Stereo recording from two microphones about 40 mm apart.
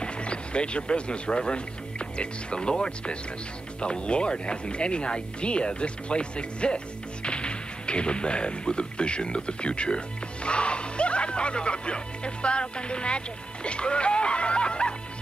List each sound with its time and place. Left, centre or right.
0.0 s speech: left